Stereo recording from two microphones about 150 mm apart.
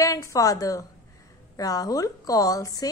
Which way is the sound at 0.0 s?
20° left (ahead or behind).